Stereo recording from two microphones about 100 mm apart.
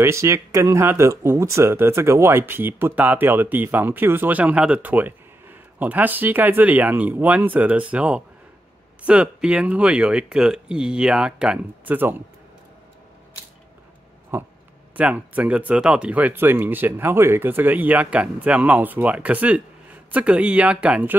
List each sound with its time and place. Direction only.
0.0 s speech: 30° right (ahead or behind)
14.3 s speech: 25° right (ahead or behind)